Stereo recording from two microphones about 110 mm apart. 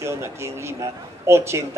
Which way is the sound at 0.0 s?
25° right (ahead or behind).